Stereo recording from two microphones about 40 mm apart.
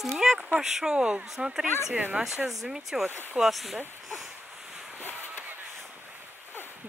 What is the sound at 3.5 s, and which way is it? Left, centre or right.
Speech, centre.